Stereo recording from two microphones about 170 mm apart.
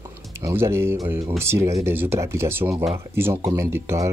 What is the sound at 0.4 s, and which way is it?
Speech, 15° right (ahead or behind).